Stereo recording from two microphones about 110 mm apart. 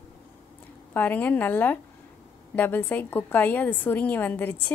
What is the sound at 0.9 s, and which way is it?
A woman's voice, 15° left (ahead or behind).